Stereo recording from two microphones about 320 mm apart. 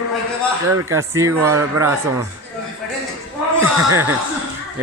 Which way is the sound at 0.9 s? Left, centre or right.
Centre.